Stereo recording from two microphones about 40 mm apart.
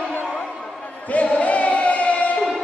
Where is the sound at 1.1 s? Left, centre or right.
Left.